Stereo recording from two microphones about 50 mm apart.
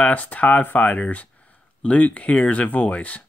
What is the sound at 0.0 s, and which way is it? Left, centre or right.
Speech, left.